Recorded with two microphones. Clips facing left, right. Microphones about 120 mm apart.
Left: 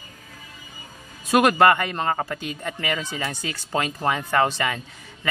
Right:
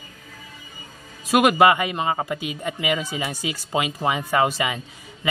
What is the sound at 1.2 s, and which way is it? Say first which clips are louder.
Speech: right 1 dB; 5° right (ahead or behind).